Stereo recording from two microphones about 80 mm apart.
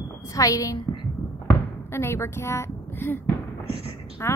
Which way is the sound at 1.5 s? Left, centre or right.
Left.